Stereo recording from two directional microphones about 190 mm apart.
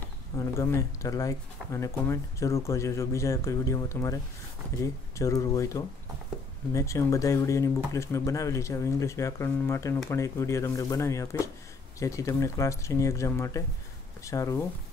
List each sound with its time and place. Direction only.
0.4 s speech: 15° left (ahead or behind)